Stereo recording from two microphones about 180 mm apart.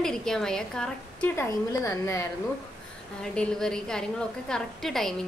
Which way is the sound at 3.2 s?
5° left (ahead or behind).